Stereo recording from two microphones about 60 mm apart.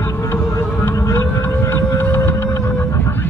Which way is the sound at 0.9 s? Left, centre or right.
Left.